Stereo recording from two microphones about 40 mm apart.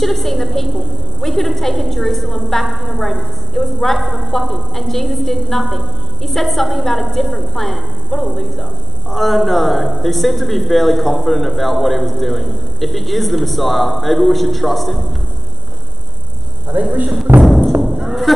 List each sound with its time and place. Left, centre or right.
0.0 s a woman's voice: centre
16.7 s speech: right
17.4 s music: centre